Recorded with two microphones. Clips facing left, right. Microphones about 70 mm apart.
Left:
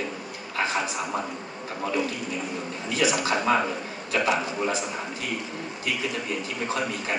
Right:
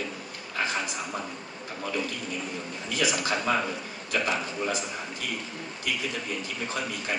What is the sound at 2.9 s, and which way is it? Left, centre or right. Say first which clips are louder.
A man's voice: left 3 dB; centre.